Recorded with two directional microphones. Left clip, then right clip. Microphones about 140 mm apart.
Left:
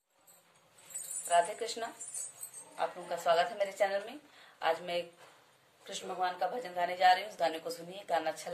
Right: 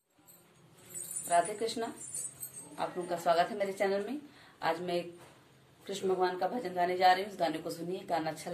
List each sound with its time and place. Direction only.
1.2 s a woman's voice: 15° left (ahead or behind)